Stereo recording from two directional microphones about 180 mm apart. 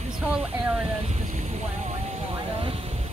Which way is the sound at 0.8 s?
35° right (ahead or behind).